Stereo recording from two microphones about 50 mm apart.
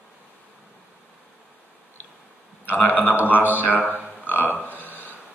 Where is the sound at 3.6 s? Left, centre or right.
Left.